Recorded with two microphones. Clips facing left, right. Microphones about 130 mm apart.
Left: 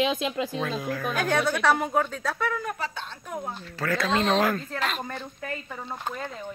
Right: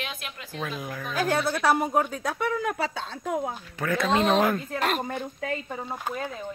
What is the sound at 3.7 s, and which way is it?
Speech, 20° right (ahead or behind).